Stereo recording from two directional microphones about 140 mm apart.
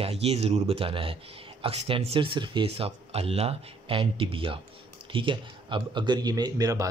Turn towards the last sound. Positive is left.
turn(degrees=-25)  # may be behind; listen again after turning